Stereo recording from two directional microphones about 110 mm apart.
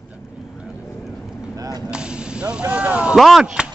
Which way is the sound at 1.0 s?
Centre (ahead or behind).